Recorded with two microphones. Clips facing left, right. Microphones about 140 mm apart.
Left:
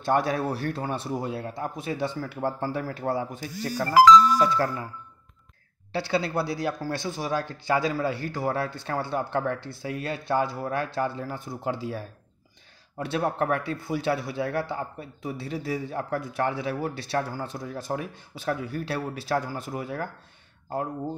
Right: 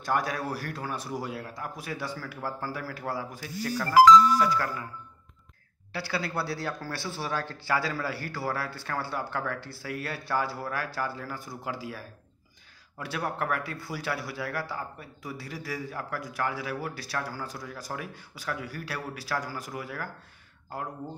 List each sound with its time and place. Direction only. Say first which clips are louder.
0.0 s speech: left 5 dB; 25° left (ahead or behind)
5.9 s speech: left 6 dB; 25° left (ahead or behind)
13.0 s speech: left 6 dB; 25° left (ahead or behind)